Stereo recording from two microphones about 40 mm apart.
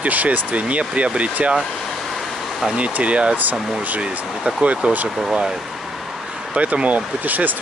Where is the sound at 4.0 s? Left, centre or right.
Centre.